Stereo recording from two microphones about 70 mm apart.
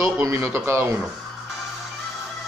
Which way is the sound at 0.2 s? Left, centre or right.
Right.